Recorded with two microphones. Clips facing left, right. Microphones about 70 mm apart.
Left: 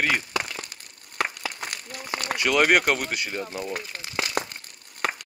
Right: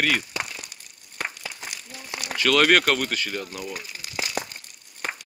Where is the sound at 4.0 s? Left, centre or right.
Left.